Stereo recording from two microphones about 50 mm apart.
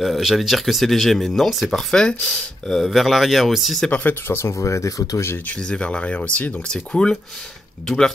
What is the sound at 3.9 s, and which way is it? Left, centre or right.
Speech, left.